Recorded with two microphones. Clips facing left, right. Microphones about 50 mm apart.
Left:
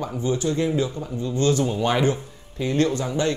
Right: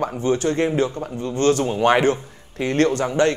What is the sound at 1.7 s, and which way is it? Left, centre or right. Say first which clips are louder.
Speech: right 5 dB; right.